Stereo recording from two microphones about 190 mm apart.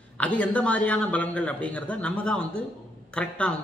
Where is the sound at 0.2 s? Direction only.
5° left (ahead or behind).